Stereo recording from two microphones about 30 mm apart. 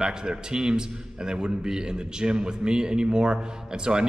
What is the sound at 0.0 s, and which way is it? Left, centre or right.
A man's voice, right.